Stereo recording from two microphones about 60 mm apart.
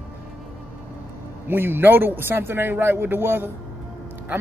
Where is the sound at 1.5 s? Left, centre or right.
Right.